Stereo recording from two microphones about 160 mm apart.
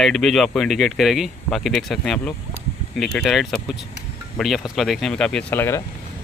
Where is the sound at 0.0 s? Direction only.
Centre (ahead or behind).